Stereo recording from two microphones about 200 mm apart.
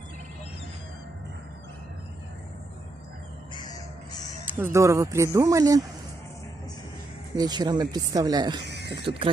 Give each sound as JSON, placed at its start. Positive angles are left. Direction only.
{"t": 4.5, "sound": "speech", "side_deg": -10}
{"t": 7.3, "sound": "speech", "side_deg": -20}
{"t": 8.6, "sound": "a sound", "side_deg": -60}